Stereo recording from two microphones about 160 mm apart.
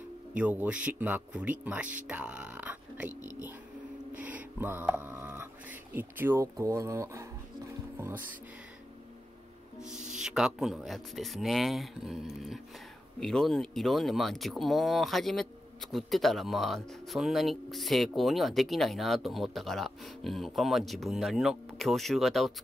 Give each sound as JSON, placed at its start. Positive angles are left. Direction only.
{"t": 0.3, "sound": "speech", "side_deg": -10}
{"t": 2.0, "sound": "a sound", "side_deg": -10}
{"t": 3.2, "sound": "whispering", "side_deg": 20}
{"t": 4.1, "sound": "speech", "side_deg": -10}
{"t": 9.8, "sound": "music", "side_deg": -5}
{"t": 10.1, "sound": "speech", "side_deg": -5}